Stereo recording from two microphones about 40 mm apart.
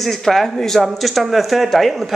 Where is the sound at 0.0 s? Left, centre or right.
Centre.